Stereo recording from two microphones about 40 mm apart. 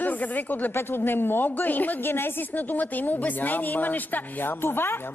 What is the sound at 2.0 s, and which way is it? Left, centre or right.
Speech, left.